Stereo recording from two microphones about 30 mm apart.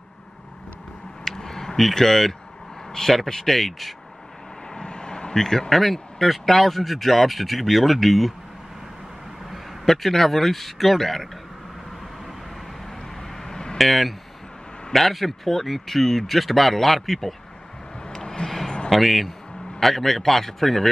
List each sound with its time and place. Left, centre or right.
1.2 s a sound: centre
1.8 s a man's voice: centre
4.7 s vehicle: left
5.7 s speech: centre
9.5 s a man's voice: centre
13.4 s a sound: left
13.7 s speech: centre
18.1 s a sound: left
18.9 s a man's voice: centre